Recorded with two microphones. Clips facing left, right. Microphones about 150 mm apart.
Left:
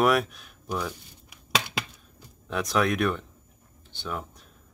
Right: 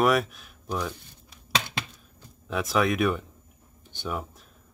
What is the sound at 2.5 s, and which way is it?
Speech, centre (ahead or behind).